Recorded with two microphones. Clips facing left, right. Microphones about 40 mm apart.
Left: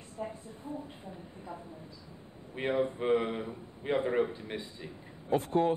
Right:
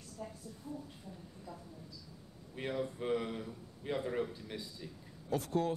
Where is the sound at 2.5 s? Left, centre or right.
Left.